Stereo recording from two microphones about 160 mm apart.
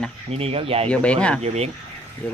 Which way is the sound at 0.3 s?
40° right (ahead or behind).